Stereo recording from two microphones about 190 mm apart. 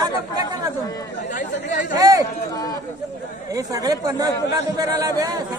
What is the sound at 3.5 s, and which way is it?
A man's voice, 20° right (ahead or behind).